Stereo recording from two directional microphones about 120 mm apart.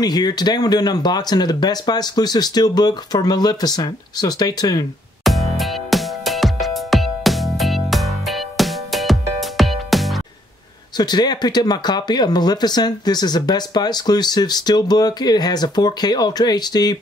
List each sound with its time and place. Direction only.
0.0 s speech: 35° left (ahead or behind)
5.2 s music: centre (ahead or behind)
11.0 s speech: 35° left (ahead or behind)